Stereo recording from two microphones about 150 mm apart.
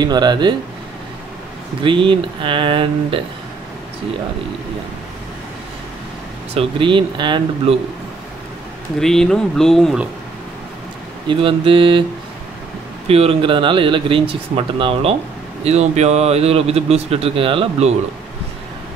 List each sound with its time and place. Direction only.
0.0 s speech: 30° right (ahead or behind)
1.8 s speech: 35° right (ahead or behind)
6.5 s speech: 35° right (ahead or behind)
9.0 s speech: 5° left (ahead or behind)
11.2 s speech: 35° right (ahead or behind)
13.1 s speech: 40° right (ahead or behind)